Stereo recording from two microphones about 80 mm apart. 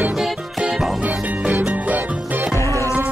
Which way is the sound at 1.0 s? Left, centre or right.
Right.